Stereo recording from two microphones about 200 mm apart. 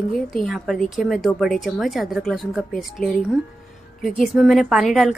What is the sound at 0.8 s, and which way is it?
A woman's voice, centre (ahead or behind).